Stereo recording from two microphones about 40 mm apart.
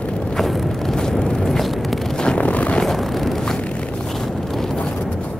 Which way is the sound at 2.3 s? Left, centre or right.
Left.